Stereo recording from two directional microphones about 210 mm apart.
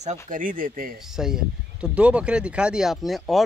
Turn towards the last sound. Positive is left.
turn(degrees=0)  # may be behind; listen again after turning